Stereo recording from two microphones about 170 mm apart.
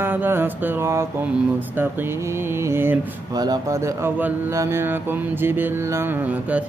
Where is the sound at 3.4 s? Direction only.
25° right (ahead or behind).